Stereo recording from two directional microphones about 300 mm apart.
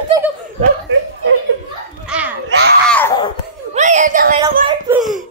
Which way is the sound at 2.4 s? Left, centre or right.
Right.